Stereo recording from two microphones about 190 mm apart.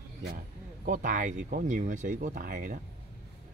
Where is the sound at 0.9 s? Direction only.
45° right (ahead or behind).